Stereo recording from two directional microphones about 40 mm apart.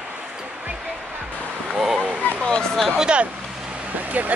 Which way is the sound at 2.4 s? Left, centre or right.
Centre.